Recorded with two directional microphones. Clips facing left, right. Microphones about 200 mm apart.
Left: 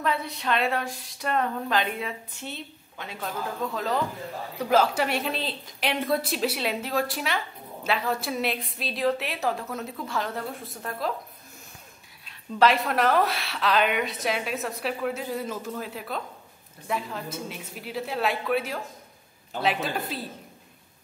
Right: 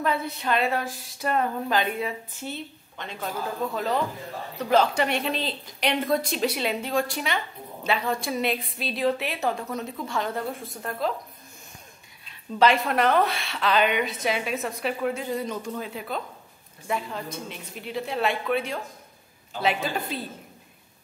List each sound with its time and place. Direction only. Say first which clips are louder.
0.0 s speech: right 2 dB; centre (ahead or behind)
12.3 s speech: right 1 dB; centre (ahead or behind)